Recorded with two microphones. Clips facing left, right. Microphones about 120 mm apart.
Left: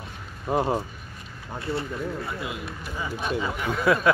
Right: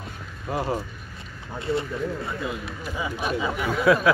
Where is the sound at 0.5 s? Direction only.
25° left (ahead or behind).